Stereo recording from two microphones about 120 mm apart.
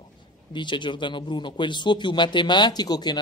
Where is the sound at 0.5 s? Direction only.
40° left (ahead or behind).